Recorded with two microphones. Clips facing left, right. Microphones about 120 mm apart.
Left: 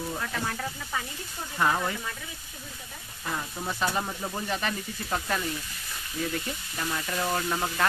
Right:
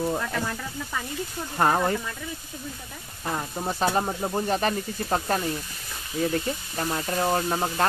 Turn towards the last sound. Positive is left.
turn(degrees=-35)  # may be behind; listen again after turning